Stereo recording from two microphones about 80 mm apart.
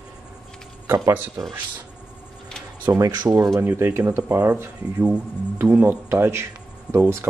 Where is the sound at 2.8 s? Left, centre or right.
Right.